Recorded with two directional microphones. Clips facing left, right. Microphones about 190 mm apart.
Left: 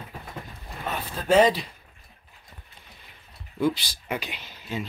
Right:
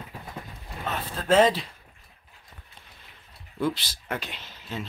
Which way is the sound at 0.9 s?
5° left (ahead or behind).